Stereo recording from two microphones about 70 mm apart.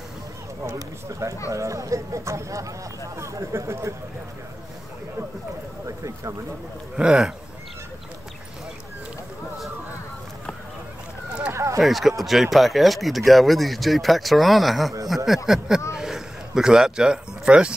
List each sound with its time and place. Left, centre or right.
0.7 s speech: right
5.9 s speech: right
7.0 s speech: centre
11.5 s a sound: right
11.8 s speech: centre